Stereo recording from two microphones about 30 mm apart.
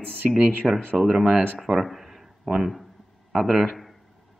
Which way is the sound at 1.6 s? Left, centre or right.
Centre.